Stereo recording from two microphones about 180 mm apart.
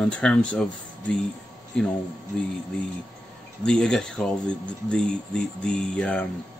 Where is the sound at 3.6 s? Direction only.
5° left (ahead or behind).